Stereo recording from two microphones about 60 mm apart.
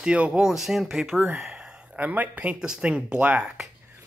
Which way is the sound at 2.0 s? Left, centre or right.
Right.